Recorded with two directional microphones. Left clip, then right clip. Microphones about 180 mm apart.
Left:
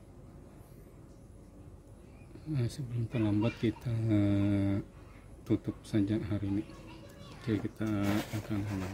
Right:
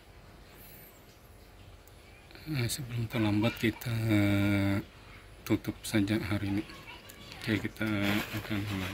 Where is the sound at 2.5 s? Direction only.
15° left (ahead or behind).